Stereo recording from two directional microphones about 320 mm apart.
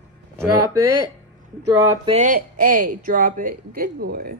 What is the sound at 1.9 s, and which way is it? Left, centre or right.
Speech, centre.